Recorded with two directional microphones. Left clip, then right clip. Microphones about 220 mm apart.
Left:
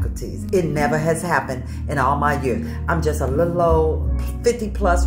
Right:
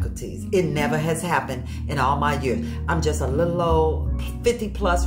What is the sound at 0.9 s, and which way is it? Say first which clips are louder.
Speech: left 4 dB; 20° right (ahead or behind).